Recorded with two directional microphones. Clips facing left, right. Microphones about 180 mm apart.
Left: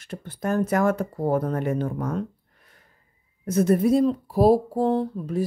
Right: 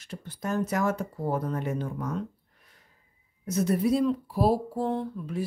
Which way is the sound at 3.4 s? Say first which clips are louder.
Left 5 dB; 50° left (ahead or behind).